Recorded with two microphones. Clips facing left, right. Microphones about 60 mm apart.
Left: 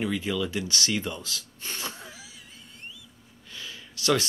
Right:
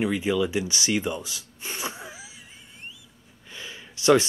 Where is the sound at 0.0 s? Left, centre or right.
Centre.